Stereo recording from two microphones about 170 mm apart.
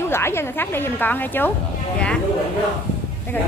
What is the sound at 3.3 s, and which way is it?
Speech, 10° left (ahead or behind).